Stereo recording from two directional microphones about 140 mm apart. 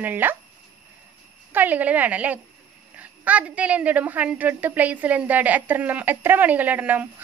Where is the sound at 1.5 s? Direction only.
15° right (ahead or behind).